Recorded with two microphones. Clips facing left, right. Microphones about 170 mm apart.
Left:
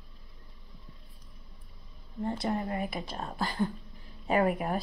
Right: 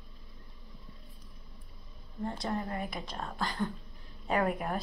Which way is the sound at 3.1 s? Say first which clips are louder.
Left 2 dB; 20° left (ahead or behind).